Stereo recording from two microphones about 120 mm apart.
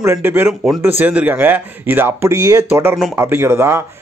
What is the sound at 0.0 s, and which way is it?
Speech, 20° right (ahead or behind).